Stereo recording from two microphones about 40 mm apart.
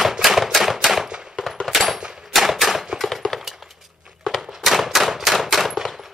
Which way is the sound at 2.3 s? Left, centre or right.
Centre.